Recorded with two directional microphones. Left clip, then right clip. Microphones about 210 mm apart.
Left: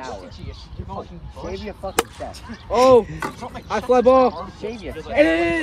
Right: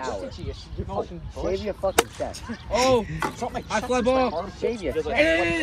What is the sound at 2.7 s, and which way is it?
Speech, 15° left (ahead or behind).